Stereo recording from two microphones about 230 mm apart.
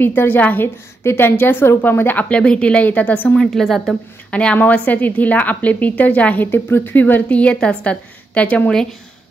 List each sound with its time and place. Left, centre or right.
0.0 s a woman's voice: centre